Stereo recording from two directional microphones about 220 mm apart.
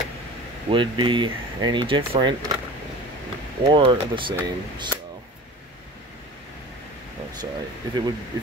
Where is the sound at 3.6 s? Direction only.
20° right (ahead or behind).